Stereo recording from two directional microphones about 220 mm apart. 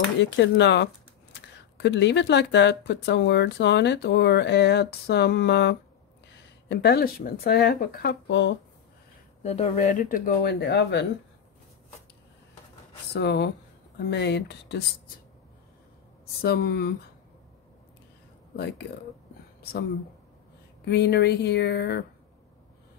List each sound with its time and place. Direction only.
0.2 s speech: 55° left (ahead or behind)
9.4 s speech: 30° left (ahead or behind); by 11.1 s 55° left (ahead or behind)
13.1 s speech: 50° left (ahead or behind)
16.3 s speech: 45° left (ahead or behind)
18.6 s speech: 50° left (ahead or behind)
20.8 s speech: 50° left (ahead or behind)